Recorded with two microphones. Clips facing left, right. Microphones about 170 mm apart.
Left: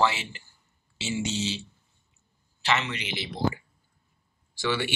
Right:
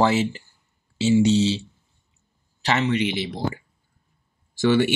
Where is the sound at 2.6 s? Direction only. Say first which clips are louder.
Right 6 dB; 40° right (ahead or behind).